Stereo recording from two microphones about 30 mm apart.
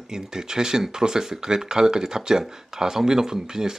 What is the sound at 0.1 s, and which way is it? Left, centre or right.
Speech, right.